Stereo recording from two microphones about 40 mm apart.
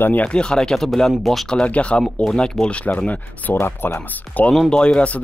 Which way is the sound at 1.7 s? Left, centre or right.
Left.